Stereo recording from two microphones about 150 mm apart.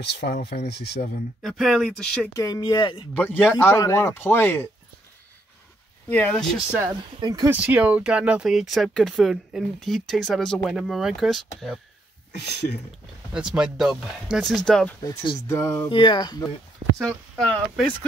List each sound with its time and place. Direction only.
0.0 s speech: 90° left
1.4 s speech: centre (ahead or behind)
2.3 s speech: 25° left (ahead or behind)
3.2 s speech: 10° left (ahead or behind)
6.0 s speech: 10° left (ahead or behind)
7.2 s speech: 25° right (ahead or behind)
7.4 s speech: 10° right (ahead or behind)
12.4 s speech: 90° left
13.3 s speech: 5° right (ahead or behind)
15.4 s speech: 20° left (ahead or behind)
15.9 s speech: 30° left (ahead or behind)
17.0 s speech: 5° left (ahead or behind)